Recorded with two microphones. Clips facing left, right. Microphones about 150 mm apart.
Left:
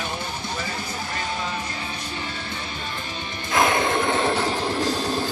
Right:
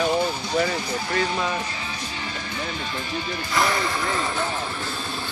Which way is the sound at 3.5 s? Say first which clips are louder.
Left 4 dB; 50° left (ahead or behind).